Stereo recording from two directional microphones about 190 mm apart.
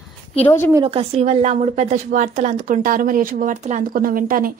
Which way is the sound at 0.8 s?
30° right (ahead or behind).